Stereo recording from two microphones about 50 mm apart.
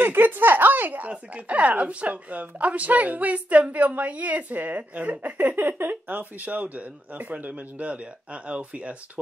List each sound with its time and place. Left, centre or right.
0.0 s speech: right